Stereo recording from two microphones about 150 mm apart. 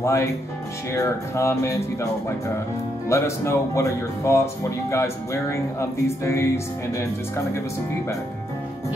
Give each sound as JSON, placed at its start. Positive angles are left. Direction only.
{"t": 0.0, "sound": "speech", "side_deg": 20}